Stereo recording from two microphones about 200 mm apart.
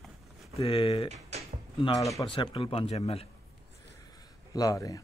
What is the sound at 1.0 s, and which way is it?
Speech, 35° right (ahead or behind).